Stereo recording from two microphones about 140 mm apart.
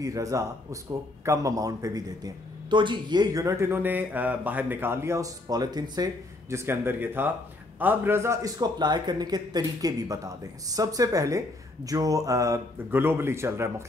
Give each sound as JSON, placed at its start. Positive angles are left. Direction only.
{"t": 0.0, "sound": "a man's voice", "side_deg": -25}
{"t": 6.5, "sound": "a man's voice", "side_deg": -20}